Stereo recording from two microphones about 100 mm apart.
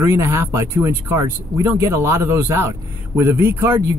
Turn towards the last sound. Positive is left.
turn(degrees=-25)  # may be behind; listen again after turning